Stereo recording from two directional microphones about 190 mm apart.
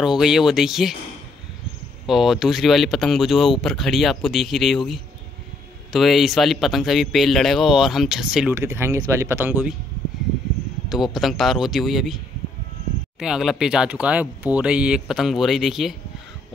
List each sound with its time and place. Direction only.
0.0 s a man's voice: 5° right (ahead or behind)
2.0 s a man's voice: centre (ahead or behind)
10.9 s a man's voice: centre (ahead or behind)
13.2 s a man's voice: 5° right (ahead or behind)